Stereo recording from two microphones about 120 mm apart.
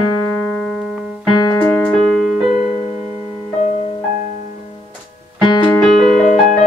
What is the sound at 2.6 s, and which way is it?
Music, 65° left (ahead or behind).